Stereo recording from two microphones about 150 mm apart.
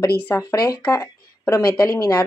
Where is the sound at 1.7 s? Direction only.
25° left (ahead or behind).